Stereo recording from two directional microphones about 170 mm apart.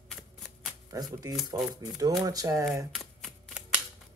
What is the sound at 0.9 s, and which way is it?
Speech, 20° right (ahead or behind).